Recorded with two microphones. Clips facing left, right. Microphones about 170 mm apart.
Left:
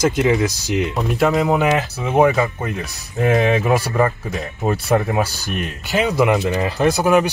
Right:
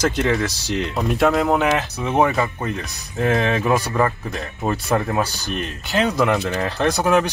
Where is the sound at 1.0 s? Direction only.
Centre (ahead or behind).